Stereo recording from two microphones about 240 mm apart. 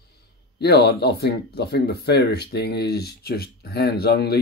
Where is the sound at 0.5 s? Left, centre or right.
Left.